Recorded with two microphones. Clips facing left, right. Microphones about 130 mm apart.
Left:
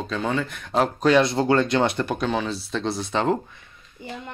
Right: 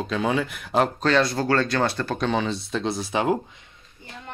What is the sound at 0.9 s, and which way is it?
Speech, 15° left (ahead or behind).